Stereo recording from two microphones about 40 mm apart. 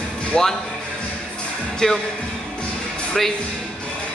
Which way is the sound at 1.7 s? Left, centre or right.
Centre.